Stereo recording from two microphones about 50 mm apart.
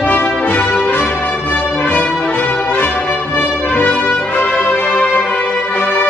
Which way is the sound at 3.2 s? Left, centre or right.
Left.